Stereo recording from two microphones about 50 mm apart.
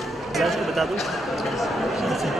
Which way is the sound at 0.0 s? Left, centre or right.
Centre.